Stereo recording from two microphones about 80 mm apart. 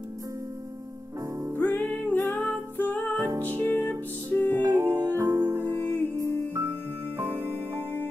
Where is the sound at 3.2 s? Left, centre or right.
Right.